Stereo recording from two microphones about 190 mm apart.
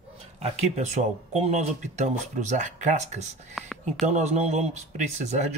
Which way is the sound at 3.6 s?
Centre (ahead or behind).